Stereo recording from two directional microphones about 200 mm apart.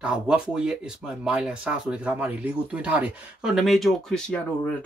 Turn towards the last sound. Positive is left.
turn(degrees=5)  # may be behind; listen again after turning